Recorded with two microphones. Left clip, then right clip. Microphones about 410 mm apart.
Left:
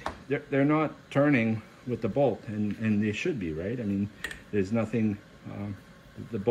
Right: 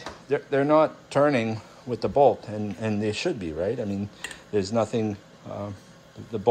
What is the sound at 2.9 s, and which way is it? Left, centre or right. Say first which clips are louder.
Speech: right 3 dB; right.